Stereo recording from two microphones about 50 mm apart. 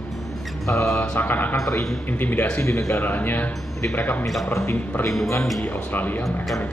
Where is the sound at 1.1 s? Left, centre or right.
Left.